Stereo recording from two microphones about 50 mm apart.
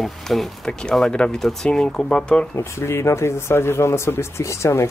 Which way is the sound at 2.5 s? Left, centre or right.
Left.